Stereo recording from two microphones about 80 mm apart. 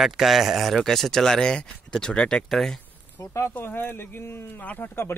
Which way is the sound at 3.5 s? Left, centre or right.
Left.